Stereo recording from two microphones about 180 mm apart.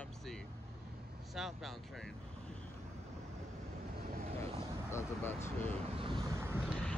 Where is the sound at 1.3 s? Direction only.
Centre (ahead or behind).